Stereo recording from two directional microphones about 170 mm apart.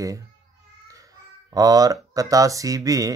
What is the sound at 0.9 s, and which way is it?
Babbling, 20° right (ahead or behind).